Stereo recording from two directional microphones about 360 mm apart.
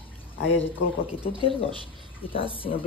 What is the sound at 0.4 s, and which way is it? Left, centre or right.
Speech, left.